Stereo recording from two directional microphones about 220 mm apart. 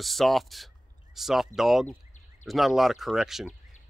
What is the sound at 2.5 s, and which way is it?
Speech, centre (ahead or behind).